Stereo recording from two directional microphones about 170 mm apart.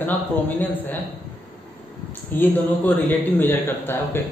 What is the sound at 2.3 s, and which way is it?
A man's voice, 10° left (ahead or behind).